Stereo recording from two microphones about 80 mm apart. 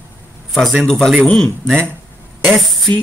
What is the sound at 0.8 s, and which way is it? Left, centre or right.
Speech, centre.